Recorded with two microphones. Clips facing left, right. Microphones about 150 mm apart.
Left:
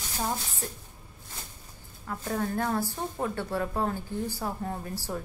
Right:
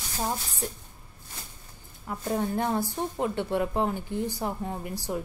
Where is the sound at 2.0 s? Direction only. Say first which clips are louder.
Right 2 dB; 20° right (ahead or behind).